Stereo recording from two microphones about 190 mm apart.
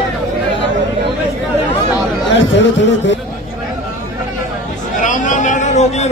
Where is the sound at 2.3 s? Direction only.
70° left (ahead or behind).